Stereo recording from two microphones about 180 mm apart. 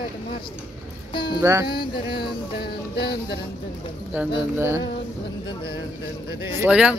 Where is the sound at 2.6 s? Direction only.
65° left (ahead or behind).